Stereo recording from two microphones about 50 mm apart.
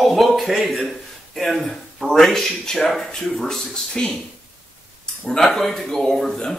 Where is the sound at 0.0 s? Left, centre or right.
Centre.